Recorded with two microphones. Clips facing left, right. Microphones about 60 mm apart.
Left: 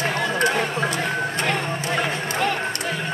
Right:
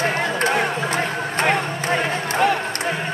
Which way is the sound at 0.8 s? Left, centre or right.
Right.